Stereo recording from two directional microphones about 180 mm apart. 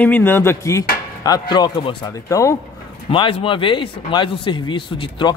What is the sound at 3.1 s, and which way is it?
Speech, 30° left (ahead or behind).